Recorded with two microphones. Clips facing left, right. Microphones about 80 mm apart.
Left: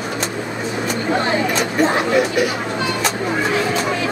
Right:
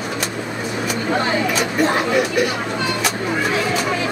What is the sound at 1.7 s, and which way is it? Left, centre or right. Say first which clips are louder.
Speech: left 2 dB; centre.